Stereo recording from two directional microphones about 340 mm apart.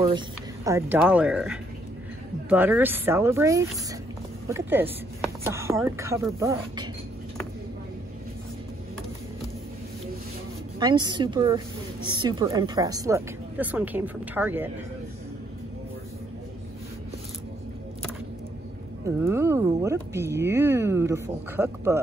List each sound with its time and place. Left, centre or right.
0.7 s a woman's voice: centre
10.8 s a woman's voice: centre
19.0 s a woman's voice: centre